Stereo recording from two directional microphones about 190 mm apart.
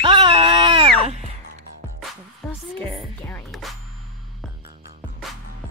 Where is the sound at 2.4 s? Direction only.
Centre (ahead or behind).